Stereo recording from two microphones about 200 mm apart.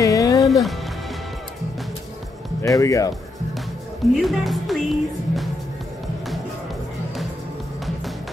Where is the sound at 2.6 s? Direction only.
15° left (ahead or behind).